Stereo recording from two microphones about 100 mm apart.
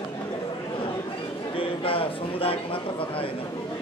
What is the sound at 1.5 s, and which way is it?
A man's voice, 65° left (ahead or behind).